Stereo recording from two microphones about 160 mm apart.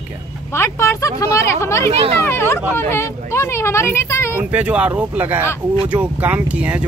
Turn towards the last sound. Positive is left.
turn(degrees=-10)  # may be behind; listen again after turning